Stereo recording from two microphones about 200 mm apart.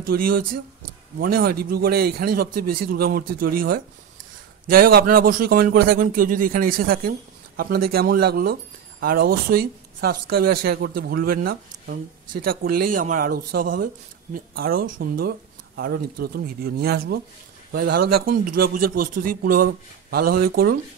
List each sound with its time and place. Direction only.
0.1 s a man's voice: 50° right (ahead or behind)